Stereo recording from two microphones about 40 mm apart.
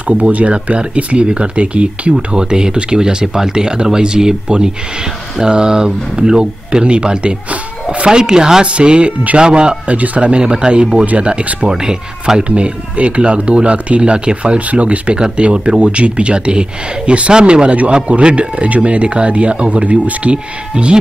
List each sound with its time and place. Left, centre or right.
0.1 s speech: right
2.1 s speech: centre
8.6 s speech: right
9.9 s speech: right
10.2 s speech: right
11.7 s speech: centre
12.4 s speech: right
20.7 s speech: right